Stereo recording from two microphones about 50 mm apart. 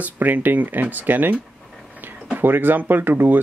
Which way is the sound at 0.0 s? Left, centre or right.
Right.